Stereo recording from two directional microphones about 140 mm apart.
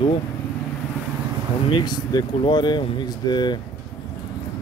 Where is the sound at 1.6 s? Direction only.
35° left (ahead or behind).